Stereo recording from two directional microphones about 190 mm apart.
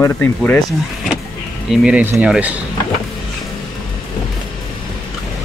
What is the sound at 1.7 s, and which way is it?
Speech, 5° right (ahead or behind).